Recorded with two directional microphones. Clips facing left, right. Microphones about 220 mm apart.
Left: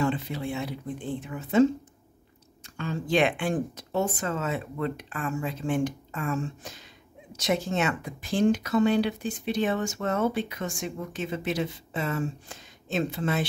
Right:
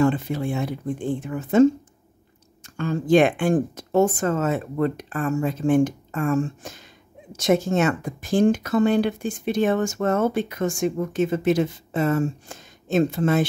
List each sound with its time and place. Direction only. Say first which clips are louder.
0.0 s speech: right 7 dB; 50° right (ahead or behind)